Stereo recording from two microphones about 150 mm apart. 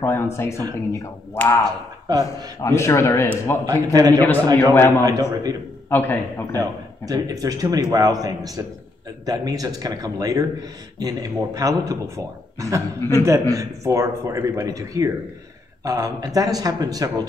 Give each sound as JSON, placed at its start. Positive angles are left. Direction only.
{"t": 0.0, "sound": "a man's voice", "side_deg": 20}
{"t": 3.9, "sound": "a man's voice", "side_deg": -25}
{"t": 4.7, "sound": "a man's voice", "side_deg": 15}
{"t": 5.0, "sound": "a man's voice", "side_deg": -25}
{"t": 5.9, "sound": "a man's voice", "side_deg": 15}
{"t": 6.6, "sound": "a man's voice", "side_deg": -25}